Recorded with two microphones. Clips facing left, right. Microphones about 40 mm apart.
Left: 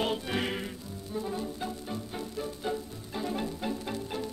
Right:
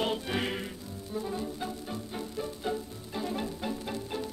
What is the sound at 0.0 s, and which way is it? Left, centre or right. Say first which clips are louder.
Music: even; centre.